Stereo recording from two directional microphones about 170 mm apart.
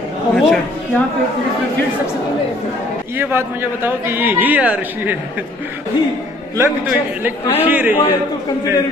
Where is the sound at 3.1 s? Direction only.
10° right (ahead or behind).